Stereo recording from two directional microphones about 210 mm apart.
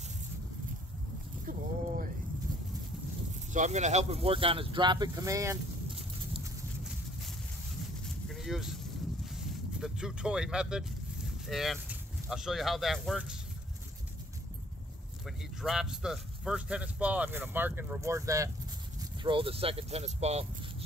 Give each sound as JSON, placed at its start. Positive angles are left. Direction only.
{"t": 1.4, "sound": "a sound", "side_deg": -40}
{"t": 3.5, "sound": "speech", "side_deg": -35}
{"t": 8.0, "sound": "vehicle", "side_deg": 0}
{"t": 11.4, "sound": "speech", "side_deg": 0}
{"t": 15.2, "sound": "speech", "side_deg": 0}